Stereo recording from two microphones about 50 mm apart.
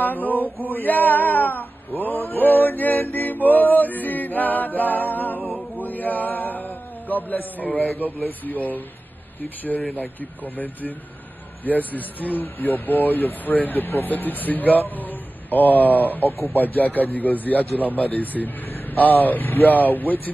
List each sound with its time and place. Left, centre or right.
0.0 s male singing: left
0.3 s male singing: right
0.7 s male singing: left
5.8 s a sound: left
8.0 s speech: left
9.9 s speech: left